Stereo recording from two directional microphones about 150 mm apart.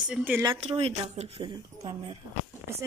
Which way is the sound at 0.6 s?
40° right (ahead or behind).